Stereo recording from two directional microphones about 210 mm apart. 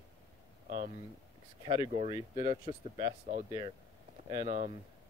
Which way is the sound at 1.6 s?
25° right (ahead or behind).